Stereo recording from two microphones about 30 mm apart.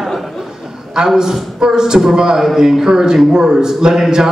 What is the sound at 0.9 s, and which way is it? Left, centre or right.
A man's voice, centre.